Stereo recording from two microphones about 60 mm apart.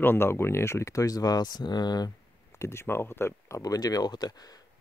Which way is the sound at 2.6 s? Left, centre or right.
Left.